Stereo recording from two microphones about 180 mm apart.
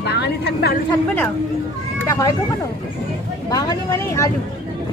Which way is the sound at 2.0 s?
15° left (ahead or behind).